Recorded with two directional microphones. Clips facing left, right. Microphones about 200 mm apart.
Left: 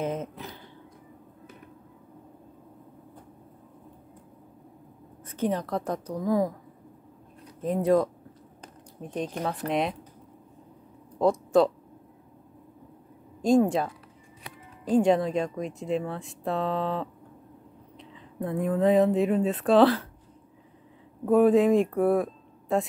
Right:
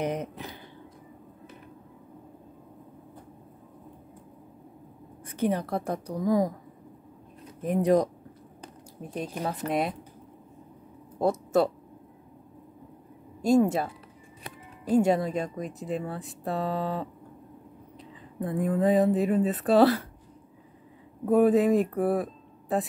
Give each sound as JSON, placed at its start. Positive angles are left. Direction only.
{"t": 0.0, "sound": "speech", "side_deg": -15}
{"t": 5.2, "sound": "speech", "side_deg": -10}
{"t": 7.6, "sound": "speech", "side_deg": -15}
{"t": 9.0, "sound": "speech", "side_deg": -5}
{"t": 11.1, "sound": "speech", "side_deg": -5}
{"t": 14.9, "sound": "speech", "side_deg": -5}
{"t": 21.3, "sound": "speech", "side_deg": -5}